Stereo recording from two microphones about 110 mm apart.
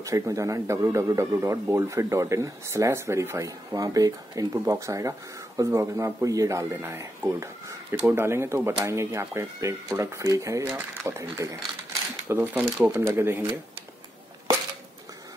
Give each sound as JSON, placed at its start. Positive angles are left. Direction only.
{"t": 0.0, "sound": "speech", "side_deg": -30}
{"t": 12.5, "sound": "speech", "side_deg": -15}